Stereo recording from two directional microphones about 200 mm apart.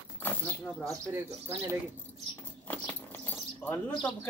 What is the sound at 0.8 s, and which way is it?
Speech, 15° right (ahead or behind).